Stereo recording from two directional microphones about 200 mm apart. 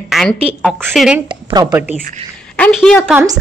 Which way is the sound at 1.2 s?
20° right (ahead or behind).